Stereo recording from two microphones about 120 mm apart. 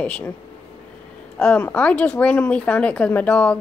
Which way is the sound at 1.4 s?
10° left (ahead or behind).